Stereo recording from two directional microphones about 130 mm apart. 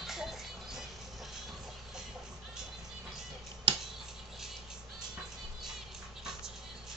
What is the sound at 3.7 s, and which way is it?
Tick-tock, 40° right (ahead or behind).